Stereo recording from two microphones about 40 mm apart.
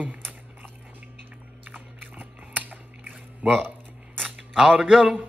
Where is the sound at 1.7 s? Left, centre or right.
Right.